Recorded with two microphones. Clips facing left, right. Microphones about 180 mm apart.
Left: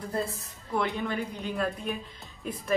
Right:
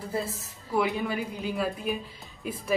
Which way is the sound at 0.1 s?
5° right (ahead or behind).